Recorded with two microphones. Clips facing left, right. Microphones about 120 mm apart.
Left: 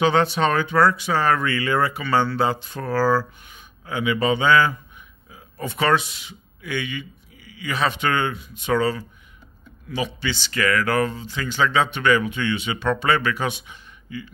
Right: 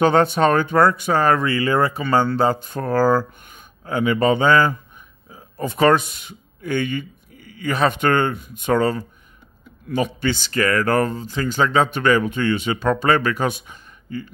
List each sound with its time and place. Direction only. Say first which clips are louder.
0.0 s speech: right 3 dB; 45° right (ahead or behind)